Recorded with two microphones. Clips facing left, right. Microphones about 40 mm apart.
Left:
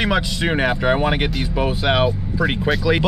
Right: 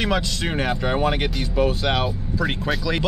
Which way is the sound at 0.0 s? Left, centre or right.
Centre.